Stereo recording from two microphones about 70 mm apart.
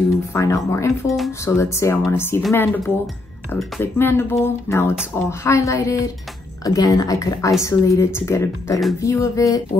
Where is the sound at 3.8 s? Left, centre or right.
Left.